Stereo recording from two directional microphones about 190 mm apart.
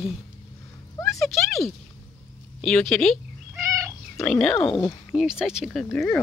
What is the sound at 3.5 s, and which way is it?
Cat, 15° right (ahead or behind).